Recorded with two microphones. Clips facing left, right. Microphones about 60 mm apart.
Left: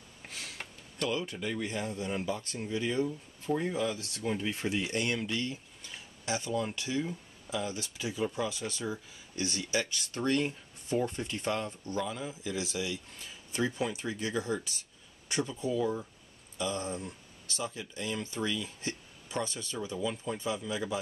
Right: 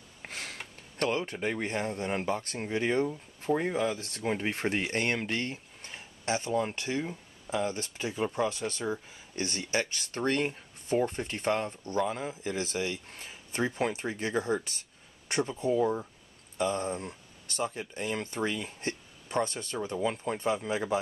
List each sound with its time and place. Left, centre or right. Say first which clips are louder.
0.2 s sniff: right 4 dB; right
0.9 s speech: right 3 dB; right